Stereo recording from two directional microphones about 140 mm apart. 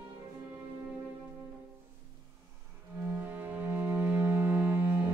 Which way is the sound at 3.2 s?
15° right (ahead or behind).